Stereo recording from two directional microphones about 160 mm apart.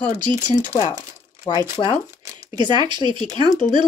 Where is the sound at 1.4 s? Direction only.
25° left (ahead or behind).